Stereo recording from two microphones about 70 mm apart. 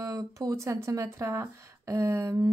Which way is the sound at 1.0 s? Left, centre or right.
Right.